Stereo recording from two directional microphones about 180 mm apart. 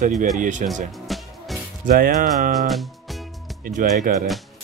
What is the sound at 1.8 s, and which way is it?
Music, 50° right (ahead or behind).